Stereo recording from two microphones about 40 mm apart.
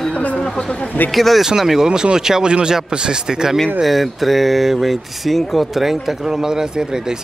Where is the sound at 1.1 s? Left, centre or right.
Centre.